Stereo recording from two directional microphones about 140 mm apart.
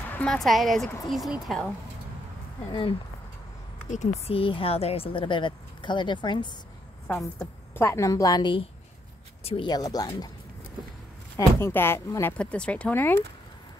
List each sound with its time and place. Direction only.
0.1 s speech: 5° left (ahead or behind)
4.3 s speech: 40° left (ahead or behind)
7.1 s a woman's voice: 10° left (ahead or behind); by 8.6 s 35° left (ahead or behind)
9.4 s speech: 45° left (ahead or behind)
9.7 s a woman's voice: 25° left (ahead or behind)
11.3 s speech: 15° left (ahead or behind)